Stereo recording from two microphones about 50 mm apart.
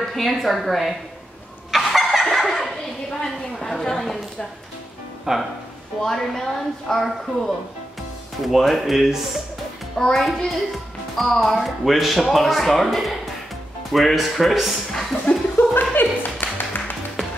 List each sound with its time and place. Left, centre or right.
0.0 s a woman's voice: centre
1.7 s a sound: centre
3.3 s speech: centre
5.3 s speech: centre
6.0 s a woman's voice: centre
9.9 s a woman's voice: centre
15.5 s music: left